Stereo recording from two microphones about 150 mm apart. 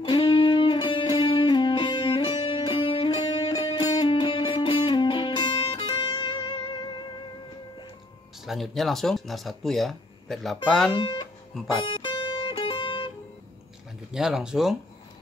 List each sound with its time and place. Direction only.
0.0 s music: 35° left (ahead or behind)
8.5 s speech: centre (ahead or behind)
11.0 s speech: 30° left (ahead or behind)
11.8 s music: 30° left (ahead or behind)
14.1 s speech: 5° right (ahead or behind)